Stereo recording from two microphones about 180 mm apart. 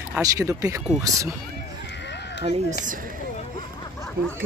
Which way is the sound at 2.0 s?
75° left (ahead or behind).